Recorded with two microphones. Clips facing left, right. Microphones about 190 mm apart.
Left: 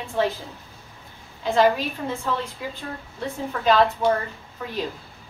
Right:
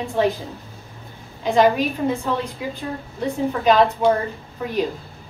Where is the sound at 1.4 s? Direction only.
15° right (ahead or behind).